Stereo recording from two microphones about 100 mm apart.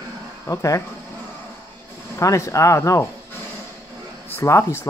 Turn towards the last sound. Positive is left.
turn(degrees=30)  # may be behind; listen again after turning